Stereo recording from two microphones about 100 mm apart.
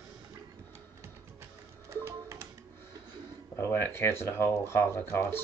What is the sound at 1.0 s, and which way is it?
Music, 25° right (ahead or behind).